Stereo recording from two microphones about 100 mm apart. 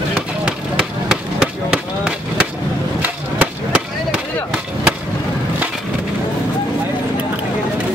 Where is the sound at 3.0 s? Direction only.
15° right (ahead or behind).